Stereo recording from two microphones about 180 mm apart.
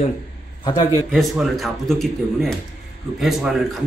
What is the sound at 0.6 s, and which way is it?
Speech, 20° left (ahead or behind).